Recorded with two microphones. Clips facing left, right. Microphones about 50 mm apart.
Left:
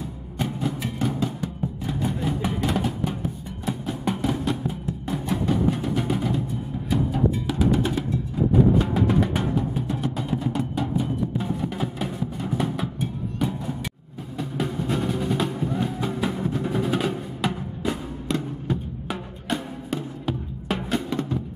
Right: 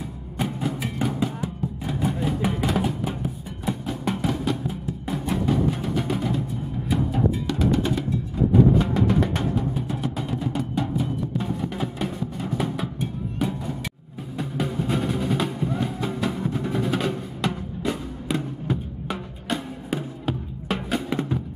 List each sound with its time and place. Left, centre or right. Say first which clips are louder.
0.4 s music: even; centre
7.4 s music: even; centre
14.6 s music: even; centre
21.1 s music: right 1 dB; centre